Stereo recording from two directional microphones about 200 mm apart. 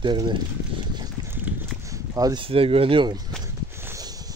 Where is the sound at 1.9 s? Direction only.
20° right (ahead or behind).